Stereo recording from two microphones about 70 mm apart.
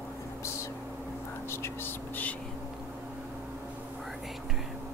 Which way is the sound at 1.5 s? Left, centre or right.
Left.